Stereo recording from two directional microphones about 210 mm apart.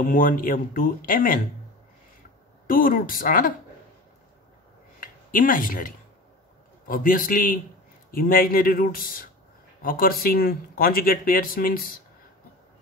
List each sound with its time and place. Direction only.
0.0 s speech: 40° left (ahead or behind)
2.6 s speech: 40° left (ahead or behind)
5.0 s speech: 40° left (ahead or behind)